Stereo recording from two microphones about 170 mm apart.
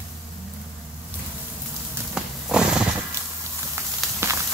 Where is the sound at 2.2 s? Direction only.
5° right (ahead or behind).